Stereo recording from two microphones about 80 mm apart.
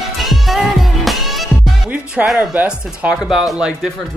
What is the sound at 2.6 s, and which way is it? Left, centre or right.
Speech, centre.